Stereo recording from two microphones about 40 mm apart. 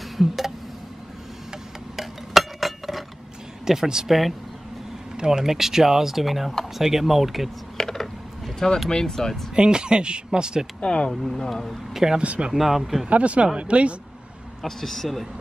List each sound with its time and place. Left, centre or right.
2.0 s a sound: centre
3.6 s speech: centre
5.1 s speech: centre
7.7 s typing: centre
8.8 s speech: centre
9.6 s speech: right
10.8 s speech: left
11.1 s speech: centre
11.9 s a man's voice: centre
12.2 s speech: right
12.5 s a man's voice: centre
13.1 s speech: right
14.6 s a man's voice: centre